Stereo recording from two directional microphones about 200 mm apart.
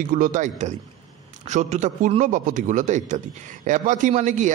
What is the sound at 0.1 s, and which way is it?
A man's voice, 40° right (ahead or behind).